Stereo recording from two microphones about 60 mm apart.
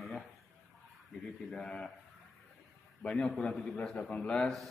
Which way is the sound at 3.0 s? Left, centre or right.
Centre.